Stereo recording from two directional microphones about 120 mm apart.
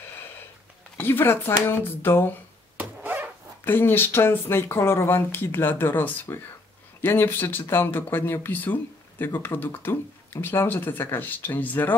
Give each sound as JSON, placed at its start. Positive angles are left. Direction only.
{"t": 0.9, "sound": "speech", "side_deg": 15}
{"t": 2.8, "sound": "a sound", "side_deg": -15}
{"t": 3.6, "sound": "speech", "side_deg": 15}